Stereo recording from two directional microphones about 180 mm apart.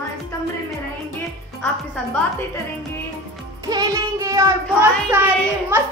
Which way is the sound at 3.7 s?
20° right (ahead or behind).